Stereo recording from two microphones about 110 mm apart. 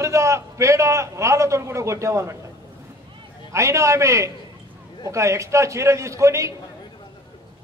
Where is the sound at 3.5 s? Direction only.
25° right (ahead or behind).